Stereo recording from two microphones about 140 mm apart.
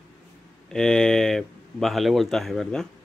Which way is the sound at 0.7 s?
5° left (ahead or behind).